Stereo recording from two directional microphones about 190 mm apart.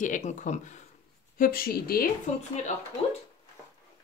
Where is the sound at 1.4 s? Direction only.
50° left (ahead or behind).